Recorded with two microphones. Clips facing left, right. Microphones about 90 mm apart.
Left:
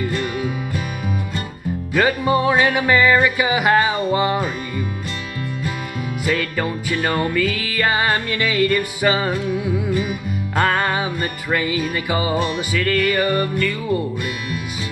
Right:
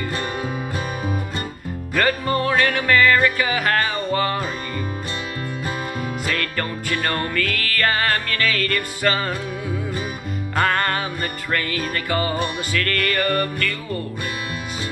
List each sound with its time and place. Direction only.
0.1 s music: 40° right (ahead or behind)
2.0 s music: 10° left (ahead or behind)
6.2 s music: 5° left (ahead or behind)
10.5 s music: 5° left (ahead or behind)